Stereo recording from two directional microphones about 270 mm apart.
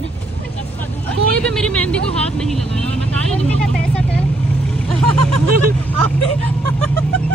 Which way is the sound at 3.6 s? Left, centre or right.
Centre.